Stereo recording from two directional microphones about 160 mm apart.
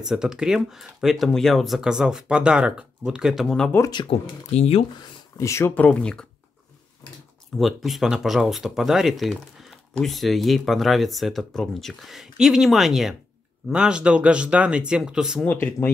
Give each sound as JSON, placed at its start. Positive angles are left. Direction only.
{"t": 0.0, "sound": "speech", "side_deg": -5}
{"t": 3.9, "sound": "speech", "side_deg": 35}
{"t": 5.4, "sound": "speech", "side_deg": 15}
{"t": 5.9, "sound": "speech", "side_deg": 5}
{"t": 7.5, "sound": "speech", "side_deg": 0}
{"t": 15.4, "sound": "speech", "side_deg": 10}